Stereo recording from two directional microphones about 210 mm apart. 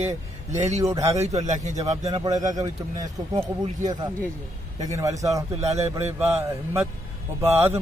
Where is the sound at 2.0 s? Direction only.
20° right (ahead or behind).